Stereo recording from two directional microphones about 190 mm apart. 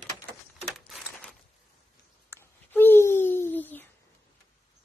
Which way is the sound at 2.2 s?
10° left (ahead or behind).